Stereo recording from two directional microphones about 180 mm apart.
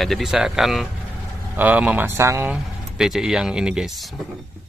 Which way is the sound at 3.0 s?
5° right (ahead or behind).